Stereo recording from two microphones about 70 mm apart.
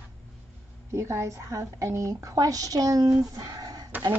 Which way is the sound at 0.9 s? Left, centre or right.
Right.